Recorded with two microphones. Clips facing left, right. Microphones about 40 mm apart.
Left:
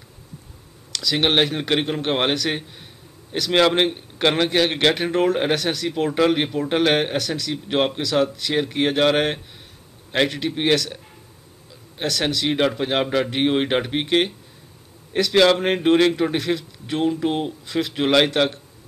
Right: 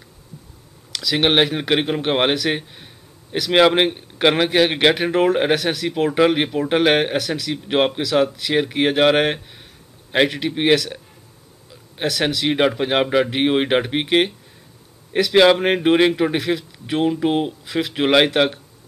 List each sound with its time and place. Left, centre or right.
0.9 s a man's voice: centre
12.0 s a man's voice: centre